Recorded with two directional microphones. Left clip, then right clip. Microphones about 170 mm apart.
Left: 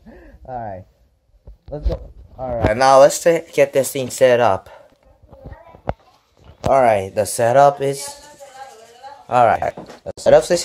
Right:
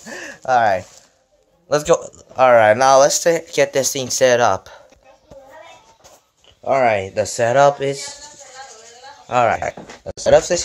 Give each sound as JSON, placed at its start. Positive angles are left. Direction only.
{"t": 0.5, "sound": "speech", "side_deg": -20}
{"t": 2.3, "sound": "speech", "side_deg": -40}
{"t": 2.7, "sound": "speech", "side_deg": 0}
{"t": 6.7, "sound": "speech", "side_deg": 10}
{"t": 9.3, "sound": "speech", "side_deg": 5}
{"t": 10.2, "sound": "speech", "side_deg": 20}